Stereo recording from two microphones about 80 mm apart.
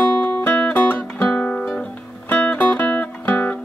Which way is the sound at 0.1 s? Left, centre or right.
Centre.